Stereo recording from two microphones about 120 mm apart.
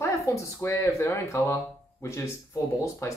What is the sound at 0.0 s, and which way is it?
Speech, 25° left (ahead or behind).